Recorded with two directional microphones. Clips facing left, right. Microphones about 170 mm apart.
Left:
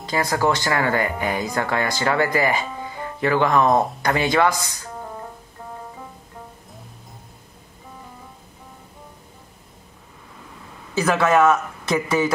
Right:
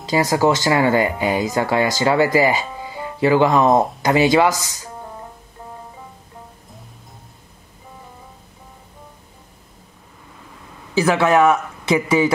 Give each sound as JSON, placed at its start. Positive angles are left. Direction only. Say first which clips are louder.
{"t": 0.1, "sound": "speech", "louder": "right 4 dB", "side_deg": -20}
{"t": 11.0, "sound": "a man's voice", "louder": "right 2 dB", "side_deg": -5}